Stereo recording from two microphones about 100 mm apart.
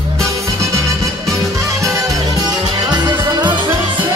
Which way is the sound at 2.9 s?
45° right (ahead or behind).